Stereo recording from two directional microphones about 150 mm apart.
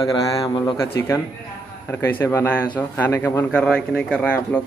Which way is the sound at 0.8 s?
15° left (ahead or behind).